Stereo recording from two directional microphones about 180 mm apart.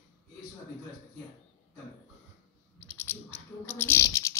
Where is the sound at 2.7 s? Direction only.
10° left (ahead or behind).